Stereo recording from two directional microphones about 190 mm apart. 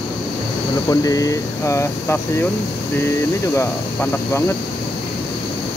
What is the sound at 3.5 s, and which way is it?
Speech, 15° left (ahead or behind).